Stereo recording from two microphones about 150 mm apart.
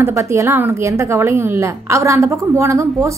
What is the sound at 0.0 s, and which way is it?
A woman's voice, 20° right (ahead or behind).